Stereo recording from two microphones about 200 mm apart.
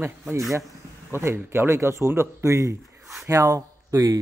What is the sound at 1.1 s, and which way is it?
Speech, 10° right (ahead or behind).